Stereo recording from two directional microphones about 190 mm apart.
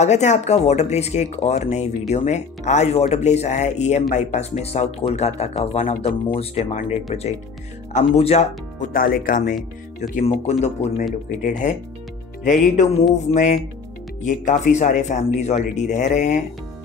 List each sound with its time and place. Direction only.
0.0 s speech: 40° left (ahead or behind)